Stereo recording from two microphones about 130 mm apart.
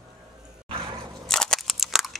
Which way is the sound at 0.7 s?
40° right (ahead or behind).